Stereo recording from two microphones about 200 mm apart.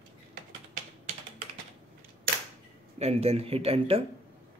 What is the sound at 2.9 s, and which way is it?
Speech, 30° right (ahead or behind).